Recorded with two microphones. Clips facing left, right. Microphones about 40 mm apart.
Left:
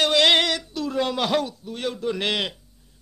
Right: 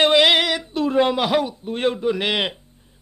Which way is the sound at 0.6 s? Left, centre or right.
Right.